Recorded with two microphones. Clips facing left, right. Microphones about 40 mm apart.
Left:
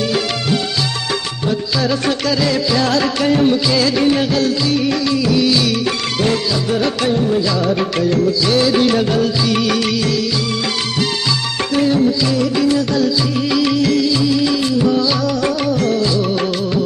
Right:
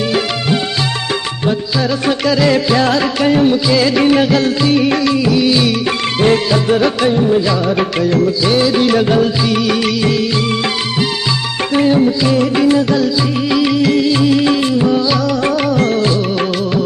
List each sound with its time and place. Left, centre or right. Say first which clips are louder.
1.8 s music: right 1 dB; centre
2.5 s music: right 3 dB; right
3.0 s music: right 2 dB; centre
5.3 s music: even; centre
6.1 s music: right 7 dB; right
6.8 s music: right 4 dB; centre
8.0 s music: right 2 dB; centre
9.0 s music: right 3 dB; centre
9.5 s music: right 2 dB; centre
11.7 s music: right 3 dB; right
13.5 s music: right 2 dB; centre
14.0 s music: right 3 dB; right
14.8 s music: right 2 dB; right
15.4 s music: right 3 dB; right